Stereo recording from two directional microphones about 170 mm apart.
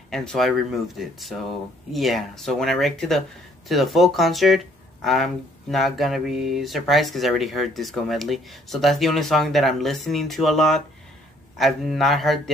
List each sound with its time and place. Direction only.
0.1 s speech: centre (ahead or behind)